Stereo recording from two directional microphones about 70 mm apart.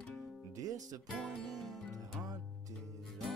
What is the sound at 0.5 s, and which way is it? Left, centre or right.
Music, right.